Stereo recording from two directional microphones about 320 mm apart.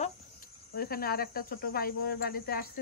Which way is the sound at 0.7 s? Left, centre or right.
Left.